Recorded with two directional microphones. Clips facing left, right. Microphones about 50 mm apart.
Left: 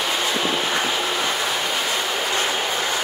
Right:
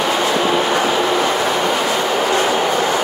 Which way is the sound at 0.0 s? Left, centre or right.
Right.